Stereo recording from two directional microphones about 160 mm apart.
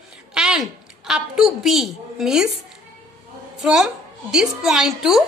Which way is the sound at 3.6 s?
Centre (ahead or behind).